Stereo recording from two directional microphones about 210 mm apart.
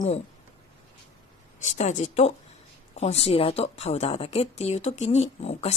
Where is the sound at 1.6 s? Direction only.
35° left (ahead or behind).